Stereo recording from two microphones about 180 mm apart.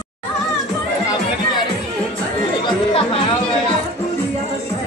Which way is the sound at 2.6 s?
30° left (ahead or behind).